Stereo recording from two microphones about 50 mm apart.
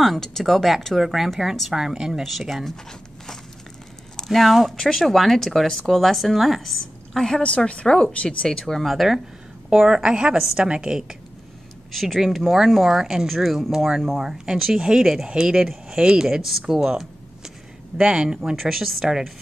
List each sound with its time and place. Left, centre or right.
0.0 s a woman's voice: centre
2.5 s a woman's voice: centre
7.4 s a woman's voice: left
8.5 s a woman's voice: centre
11.9 s a woman's voice: centre
18.4 s a woman's voice: centre